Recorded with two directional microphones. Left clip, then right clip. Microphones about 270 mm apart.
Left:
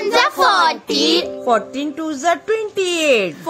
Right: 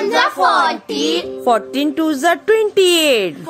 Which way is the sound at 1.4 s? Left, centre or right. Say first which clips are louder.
Right 2 dB; right.